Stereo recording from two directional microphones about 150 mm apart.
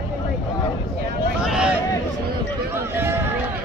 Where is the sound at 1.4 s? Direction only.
5° right (ahead or behind).